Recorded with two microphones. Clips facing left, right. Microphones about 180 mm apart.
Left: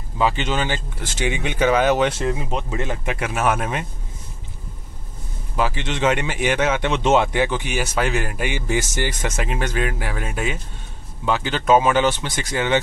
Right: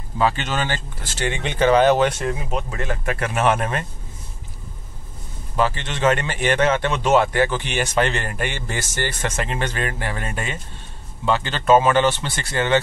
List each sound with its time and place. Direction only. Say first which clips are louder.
0.2 s speech: even; 15° left (ahead or behind)
2.0 s speech: left 1 dB; 20° left (ahead or behind); by 3.8 s 5° left (ahead or behind)
5.6 s speech: right 1 dB; 15° left (ahead or behind)